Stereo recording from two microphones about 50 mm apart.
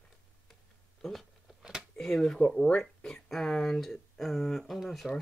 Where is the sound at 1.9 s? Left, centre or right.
Centre.